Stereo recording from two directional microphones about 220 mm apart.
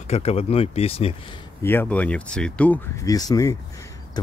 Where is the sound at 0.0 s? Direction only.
30° left (ahead or behind).